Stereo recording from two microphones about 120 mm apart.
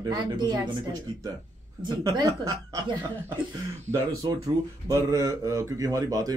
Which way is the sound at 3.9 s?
30° right (ahead or behind).